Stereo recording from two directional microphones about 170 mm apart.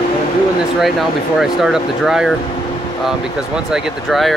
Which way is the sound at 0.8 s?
Centre (ahead or behind).